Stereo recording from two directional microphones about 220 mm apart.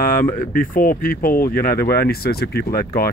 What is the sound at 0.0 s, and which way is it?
Speech, 40° left (ahead or behind).